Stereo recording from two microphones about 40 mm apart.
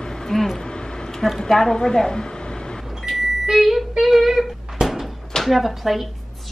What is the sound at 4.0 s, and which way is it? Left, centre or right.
Humming, centre.